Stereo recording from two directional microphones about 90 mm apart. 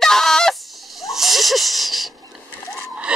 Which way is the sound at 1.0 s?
Centre (ahead or behind).